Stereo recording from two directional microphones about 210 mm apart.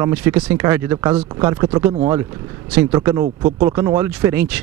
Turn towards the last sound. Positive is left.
turn(degrees=-10)  # may be behind; listen again after turning